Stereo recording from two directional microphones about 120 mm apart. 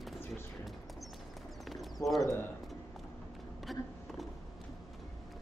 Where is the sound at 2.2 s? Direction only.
25° left (ahead or behind).